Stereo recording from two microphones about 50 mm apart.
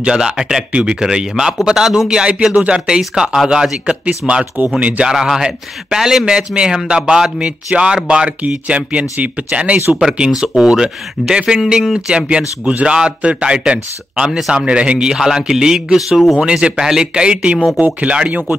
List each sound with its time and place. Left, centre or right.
0.0 s speech: centre
4.2 s speech: centre
4.7 s speech: right
5.1 s speech: centre